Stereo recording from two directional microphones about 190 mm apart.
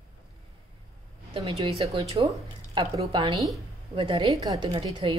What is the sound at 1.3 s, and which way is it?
A woman's voice, 30° right (ahead or behind).